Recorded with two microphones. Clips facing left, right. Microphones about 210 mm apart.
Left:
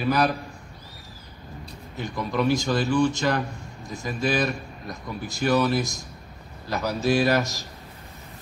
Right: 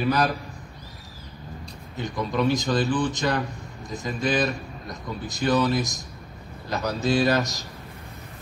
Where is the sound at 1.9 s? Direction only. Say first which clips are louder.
Right 1 dB; 20° right (ahead or behind).